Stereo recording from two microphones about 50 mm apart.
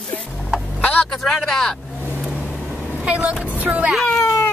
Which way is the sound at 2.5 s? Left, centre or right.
Centre.